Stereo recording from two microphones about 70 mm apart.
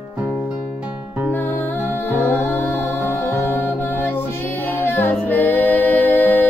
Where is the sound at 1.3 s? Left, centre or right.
Left.